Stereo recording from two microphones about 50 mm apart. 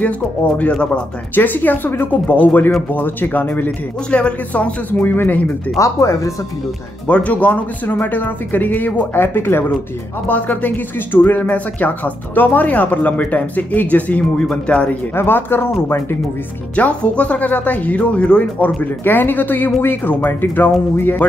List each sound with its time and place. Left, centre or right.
0.6 s speech: left
1.3 s speech: left
4.1 s speech: left
4.9 s speech: left
5.8 s speech: left
7.1 s speech: left
10.2 s speech: left
15.1 s speech: left
16.7 s speech: left
18.8 s speech: left